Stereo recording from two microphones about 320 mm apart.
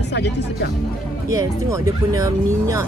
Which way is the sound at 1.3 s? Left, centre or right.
Centre.